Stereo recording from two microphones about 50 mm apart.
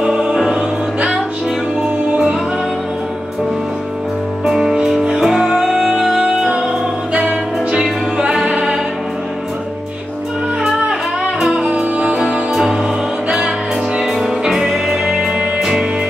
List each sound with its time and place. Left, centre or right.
0.0 s music: centre
4.5 s music: centre
10.6 s music: centre
13.9 s music: centre